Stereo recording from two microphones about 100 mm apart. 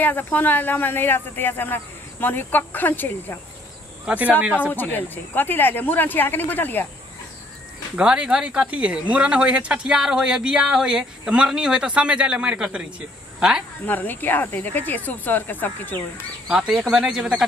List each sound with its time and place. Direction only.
0.0 s speech: 15° left (ahead or behind)
4.0 s speech: 15° right (ahead or behind)
4.7 s speech: 20° left (ahead or behind)
7.9 s speech: 10° right (ahead or behind)
13.8 s speech: 20° left (ahead or behind)
16.4 s speech: 5° right (ahead or behind)